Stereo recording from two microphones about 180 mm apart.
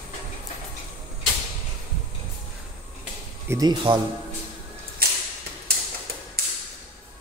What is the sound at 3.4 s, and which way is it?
Speech, 20° right (ahead or behind).